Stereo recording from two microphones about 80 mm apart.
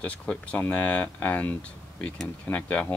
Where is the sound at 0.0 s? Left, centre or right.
Centre.